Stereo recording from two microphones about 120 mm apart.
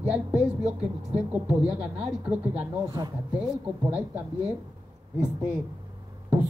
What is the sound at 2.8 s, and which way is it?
Speech, 30° right (ahead or behind).